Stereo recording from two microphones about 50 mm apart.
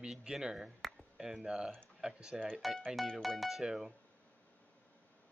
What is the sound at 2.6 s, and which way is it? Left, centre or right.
Speech, centre.